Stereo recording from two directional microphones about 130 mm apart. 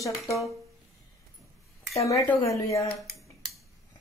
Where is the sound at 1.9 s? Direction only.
25° left (ahead or behind).